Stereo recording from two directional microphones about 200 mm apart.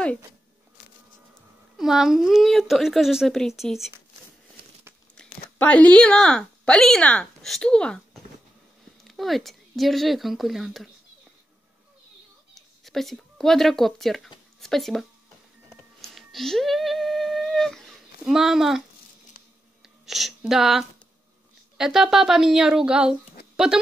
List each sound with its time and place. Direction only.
1.8 s speech: centre (ahead or behind)
5.6 s speech: 5° left (ahead or behind)
12.5 s speech: centre (ahead or behind)
16.0 s humming: centre (ahead or behind)
18.2 s speech: centre (ahead or behind)
20.1 s speech: centre (ahead or behind)
23.5 s a sound: 5° right (ahead or behind)